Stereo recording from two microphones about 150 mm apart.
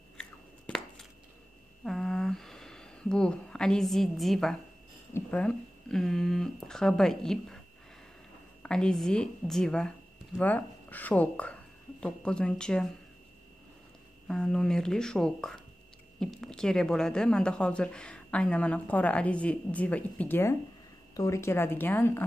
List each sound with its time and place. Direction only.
0.2 s a sound: 5° left (ahead or behind)
5.1 s speech: 10° left (ahead or behind)
8.6 s speech: 5° left (ahead or behind)
14.2 s a woman's voice: 5° left (ahead or behind)